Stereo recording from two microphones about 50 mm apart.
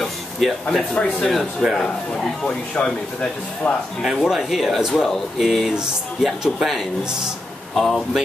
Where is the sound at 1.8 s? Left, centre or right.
Centre.